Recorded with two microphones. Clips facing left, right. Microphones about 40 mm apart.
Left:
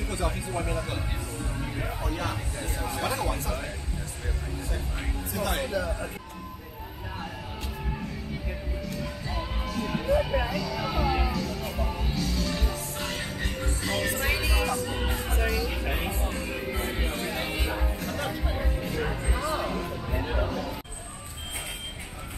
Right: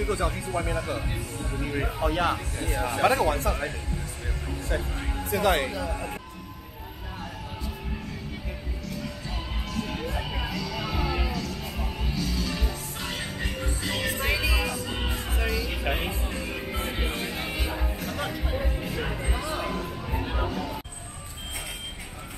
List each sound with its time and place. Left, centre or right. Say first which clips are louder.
0.3 s speech: right 2 dB; centre
1.6 s speech: right 8 dB; right
2.8 s speech: right 8 dB; right
5.3 s speech: right 7 dB; right
9.0 s music: left 2 dB; centre
19.8 s a sound: even; centre